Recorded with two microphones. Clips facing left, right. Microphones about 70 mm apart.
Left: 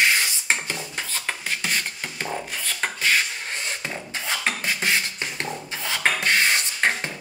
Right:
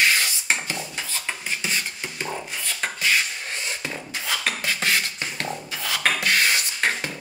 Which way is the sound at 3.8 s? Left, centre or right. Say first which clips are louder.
Even; left.